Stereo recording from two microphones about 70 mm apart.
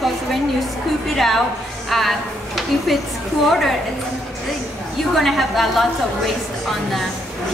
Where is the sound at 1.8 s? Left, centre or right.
Centre.